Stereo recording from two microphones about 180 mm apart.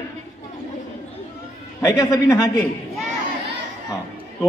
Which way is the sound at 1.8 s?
15° left (ahead or behind).